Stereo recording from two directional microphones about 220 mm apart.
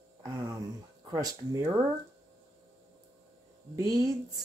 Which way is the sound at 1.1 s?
15° right (ahead or behind).